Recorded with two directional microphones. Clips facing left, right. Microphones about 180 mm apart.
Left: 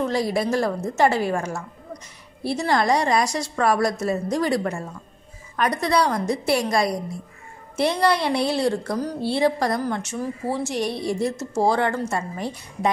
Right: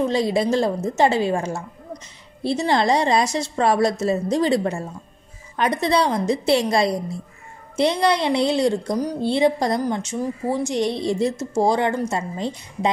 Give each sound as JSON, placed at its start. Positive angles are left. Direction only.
{"t": 0.0, "sound": "a woman's voice", "side_deg": -20}